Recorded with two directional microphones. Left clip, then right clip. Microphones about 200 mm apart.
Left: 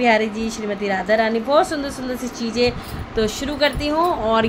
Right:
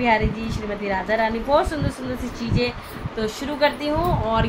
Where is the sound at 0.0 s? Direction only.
40° left (ahead or behind).